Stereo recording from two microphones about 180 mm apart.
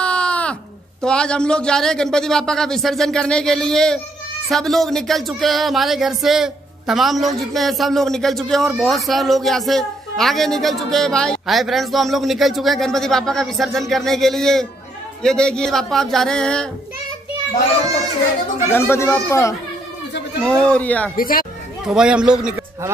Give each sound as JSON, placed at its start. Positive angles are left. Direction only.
{"t": 0.0, "sound": "a sound", "side_deg": 5}
{"t": 1.0, "sound": "speech", "side_deg": 5}
{"t": 18.7, "sound": "speech", "side_deg": 15}
{"t": 21.2, "sound": "speech", "side_deg": 55}
{"t": 21.8, "sound": "speech", "side_deg": -5}